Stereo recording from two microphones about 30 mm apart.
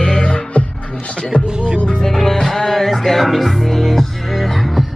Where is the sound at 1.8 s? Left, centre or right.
Left.